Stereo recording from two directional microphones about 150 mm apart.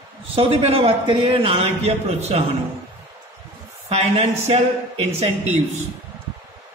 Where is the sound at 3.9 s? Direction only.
45° right (ahead or behind).